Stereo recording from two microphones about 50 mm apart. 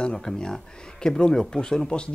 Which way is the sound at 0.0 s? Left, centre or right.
Centre.